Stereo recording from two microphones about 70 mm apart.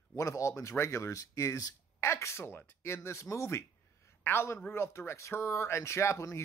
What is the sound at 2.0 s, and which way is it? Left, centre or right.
Speech, left.